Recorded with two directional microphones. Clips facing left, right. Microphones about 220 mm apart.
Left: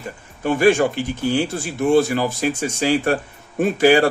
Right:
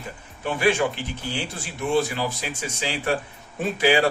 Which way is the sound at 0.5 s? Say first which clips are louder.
Left 6 dB; 45° left (ahead or behind).